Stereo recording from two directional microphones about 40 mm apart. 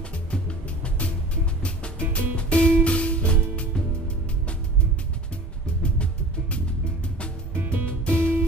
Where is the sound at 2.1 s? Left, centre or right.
Left.